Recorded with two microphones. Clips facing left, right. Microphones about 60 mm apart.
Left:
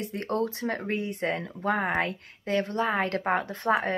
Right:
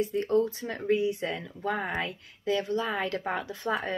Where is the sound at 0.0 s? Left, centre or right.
Left.